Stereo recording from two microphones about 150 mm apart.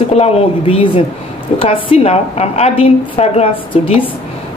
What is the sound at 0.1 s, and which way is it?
A woman's voice, 40° left (ahead or behind).